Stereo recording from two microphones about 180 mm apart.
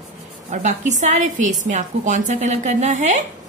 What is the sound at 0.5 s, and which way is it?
A woman's voice, 40° right (ahead or behind).